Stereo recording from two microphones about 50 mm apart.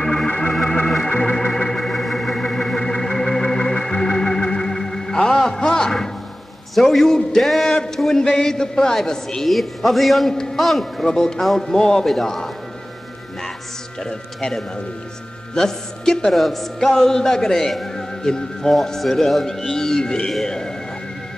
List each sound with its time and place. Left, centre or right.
0.0 s organ: centre
6.7 s a man's voice: centre
7.7 s a sound: centre
8.0 s a woman's voice: centre
10.3 s a woman's voice: centre
14.0 s a woman's voice: centre
20.3 s a sound: centre